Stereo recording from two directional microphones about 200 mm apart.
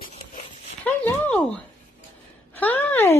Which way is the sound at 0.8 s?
10° left (ahead or behind).